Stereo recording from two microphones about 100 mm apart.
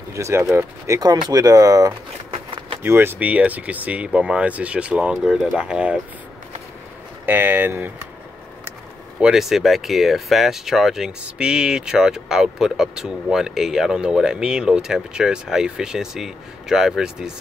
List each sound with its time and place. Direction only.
0.1 s speech: 30° right (ahead or behind)
1.0 s speech: 40° right (ahead or behind)
2.3 s vehicle: 60° right (ahead or behind)
2.8 s speech: 25° right (ahead or behind)
7.2 s speech: 20° right (ahead or behind)
9.2 s speech: 5° right (ahead or behind)